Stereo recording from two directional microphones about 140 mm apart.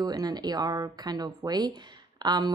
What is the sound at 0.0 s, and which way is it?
Speech, 30° right (ahead or behind).